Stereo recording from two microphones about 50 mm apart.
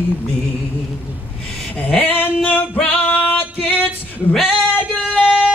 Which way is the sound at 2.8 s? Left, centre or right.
Left.